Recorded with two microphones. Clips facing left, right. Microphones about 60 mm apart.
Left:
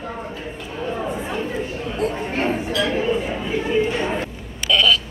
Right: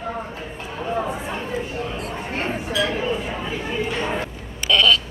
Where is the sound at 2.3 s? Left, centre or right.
Centre.